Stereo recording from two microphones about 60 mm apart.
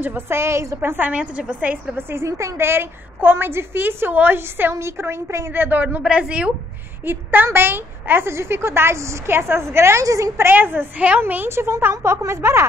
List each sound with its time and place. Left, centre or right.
0.0 s a woman's voice: right
0.9 s a woman's voice: right
2.0 s a woman's voice: right
2.2 s a woman's voice: right
2.6 s a woman's voice: right
4.7 s a woman's voice: right
5.5 s a woman's voice: right
6.0 s a woman's voice: right
7.1 s a woman's voice: right
10.0 s a woman's voice: right
10.4 s a woman's voice: right
11.5 s a woman's voice: right